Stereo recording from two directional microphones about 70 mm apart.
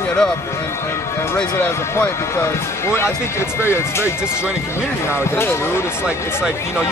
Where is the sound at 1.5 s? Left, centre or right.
Left.